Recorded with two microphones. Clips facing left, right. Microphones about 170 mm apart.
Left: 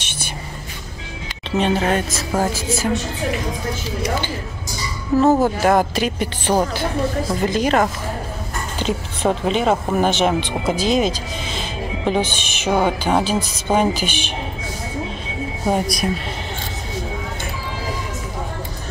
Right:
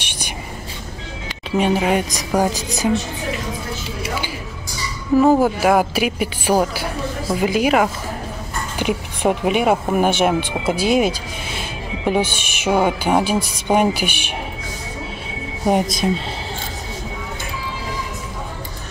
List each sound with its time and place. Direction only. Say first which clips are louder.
1.6 s speech: right 1 dB; 10° right (ahead or behind)
5.2 s speech: even; 10° right (ahead or behind)
15.6 s a woman's voice: right 2 dB; 20° right (ahead or behind)